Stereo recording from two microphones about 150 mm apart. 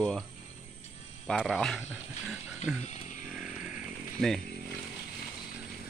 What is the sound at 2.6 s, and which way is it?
Speech, 55° left (ahead or behind).